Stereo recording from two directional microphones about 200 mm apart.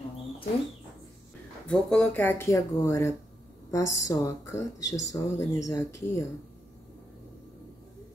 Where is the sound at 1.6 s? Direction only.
5° left (ahead or behind).